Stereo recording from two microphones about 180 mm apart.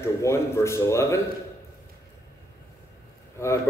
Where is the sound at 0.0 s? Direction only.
15° left (ahead or behind).